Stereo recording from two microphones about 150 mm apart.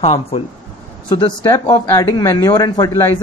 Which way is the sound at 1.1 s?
30° left (ahead or behind).